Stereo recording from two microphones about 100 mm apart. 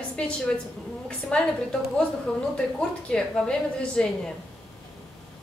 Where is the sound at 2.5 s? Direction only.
5° left (ahead or behind).